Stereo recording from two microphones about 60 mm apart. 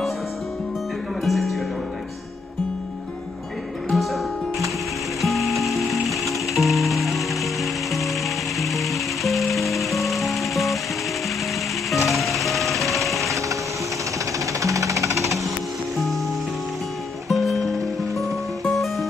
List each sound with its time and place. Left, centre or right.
1.2 s music: centre
3.9 s music: centre
5.2 s music: centre
11.9 s music: centre
14.4 s music: right
17.3 s music: centre